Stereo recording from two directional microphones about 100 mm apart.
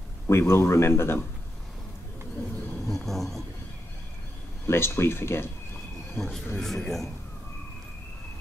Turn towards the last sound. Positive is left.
turn(degrees=5)  # may be behind; listen again after turning